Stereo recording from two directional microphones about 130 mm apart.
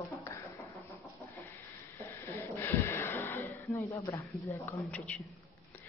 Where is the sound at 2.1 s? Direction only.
15° left (ahead or behind).